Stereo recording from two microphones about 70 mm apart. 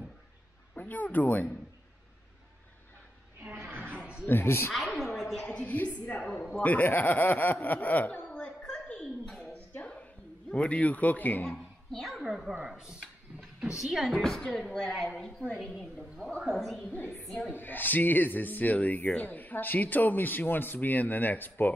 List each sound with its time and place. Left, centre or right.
0.7 s speech: left
3.6 s a sound: right
4.3 s speech: left
4.7 s a sound: centre
5.7 s speech: left
6.1 s speech: centre
6.6 s speech: left
9.8 s music: centre
10.5 s speech: centre
11.4 s a child's voice: centre
12.3 s a woman's voice: centre
14.2 s a woman's voice: centre
16.9 s speech: left